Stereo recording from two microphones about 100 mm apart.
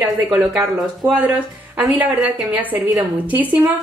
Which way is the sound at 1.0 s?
35° right (ahead or behind).